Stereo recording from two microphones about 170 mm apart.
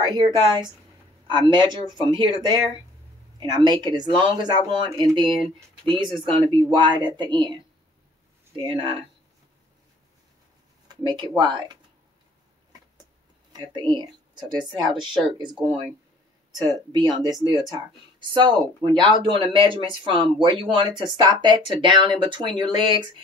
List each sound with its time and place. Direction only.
0.0 s speech: 25° right (ahead or behind)
8.6 s speech: 30° right (ahead or behind)
10.9 s speech: 25° right (ahead or behind)
13.5 s speech: 30° right (ahead or behind)